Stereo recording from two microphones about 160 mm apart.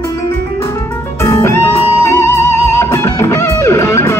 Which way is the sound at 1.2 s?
15° left (ahead or behind).